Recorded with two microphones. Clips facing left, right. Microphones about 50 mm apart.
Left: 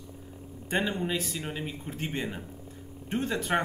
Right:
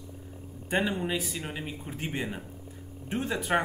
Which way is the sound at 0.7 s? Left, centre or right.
Centre.